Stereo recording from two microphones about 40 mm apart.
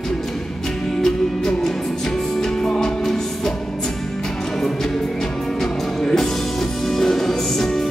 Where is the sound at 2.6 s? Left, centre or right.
Centre.